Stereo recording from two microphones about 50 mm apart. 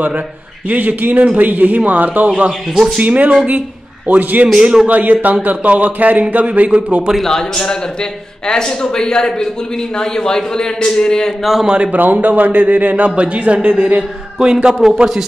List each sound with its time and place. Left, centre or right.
0.7 s a man's voice: right
4.6 s a man's voice: centre
4.8 s a man's voice: right
7.2 s speech: centre
11.4 s a man's voice: centre
11.7 s a man's voice: right